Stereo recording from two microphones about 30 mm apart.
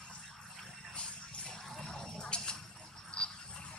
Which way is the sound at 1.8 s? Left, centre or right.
Centre.